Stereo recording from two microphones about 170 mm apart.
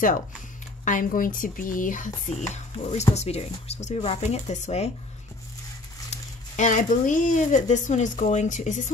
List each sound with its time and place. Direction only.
0.8 s speech: 50° left (ahead or behind)
6.0 s speech: 45° left (ahead or behind)